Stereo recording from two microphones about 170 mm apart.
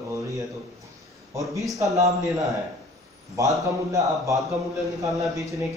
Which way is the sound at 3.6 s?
20° right (ahead or behind).